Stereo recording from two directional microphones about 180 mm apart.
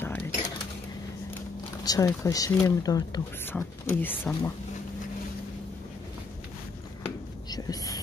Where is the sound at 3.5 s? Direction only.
10° left (ahead or behind).